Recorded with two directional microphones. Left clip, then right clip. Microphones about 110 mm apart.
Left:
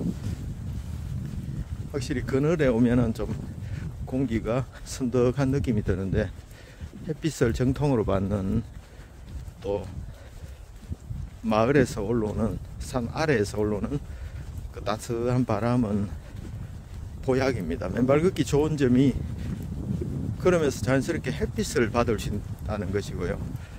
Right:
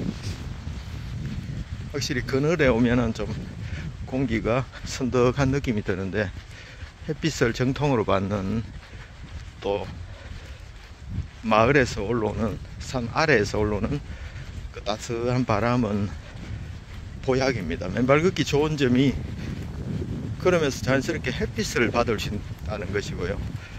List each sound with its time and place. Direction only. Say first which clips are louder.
1.9 s speech: right 2 dB; 35° left (ahead or behind)
5.1 s speech: right 2 dB; 35° left (ahead or behind)
9.6 s speech: right 3 dB; 50° left (ahead or behind)
11.4 s speech: right 3 dB; 45° left (ahead or behind)
17.2 s speech: right 2 dB; 45° left (ahead or behind)
20.4 s speech: right 1 dB; 45° left (ahead or behind)